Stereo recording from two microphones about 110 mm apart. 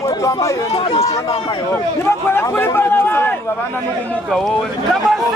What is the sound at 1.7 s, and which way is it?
Speech, 20° left (ahead or behind).